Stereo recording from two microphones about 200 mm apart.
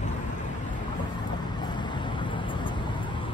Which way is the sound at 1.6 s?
20° left (ahead or behind).